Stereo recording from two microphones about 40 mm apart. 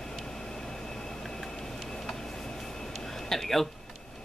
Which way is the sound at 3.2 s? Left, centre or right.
Centre.